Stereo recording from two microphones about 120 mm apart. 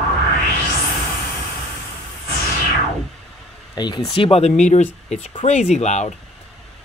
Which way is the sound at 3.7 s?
35° left (ahead or behind).